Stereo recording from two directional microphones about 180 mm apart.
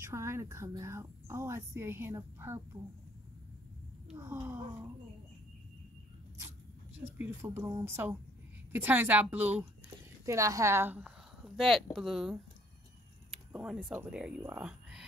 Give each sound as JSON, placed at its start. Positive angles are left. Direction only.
{"t": 0.0, "sound": "speech", "side_deg": -15}
{"t": 4.2, "sound": "speech", "side_deg": -15}
{"t": 7.2, "sound": "speech", "side_deg": -15}